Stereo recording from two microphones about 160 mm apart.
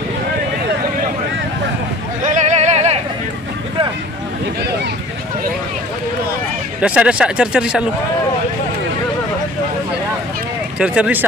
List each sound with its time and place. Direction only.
2.2 s a sound: 50° right (ahead or behind)
6.8 s speech: 5° right (ahead or behind)
10.8 s speech: 10° right (ahead or behind)